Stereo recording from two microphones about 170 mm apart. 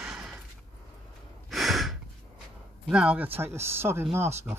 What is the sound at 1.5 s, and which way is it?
Sigh, centre (ahead or behind).